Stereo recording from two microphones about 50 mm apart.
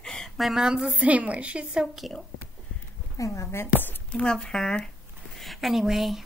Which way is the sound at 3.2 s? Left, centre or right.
Left.